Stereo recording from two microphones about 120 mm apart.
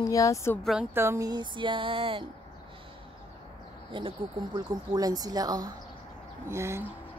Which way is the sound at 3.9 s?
45° right (ahead or behind).